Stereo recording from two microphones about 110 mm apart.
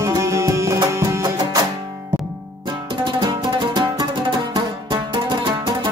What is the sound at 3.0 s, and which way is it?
Music, 45° right (ahead or behind).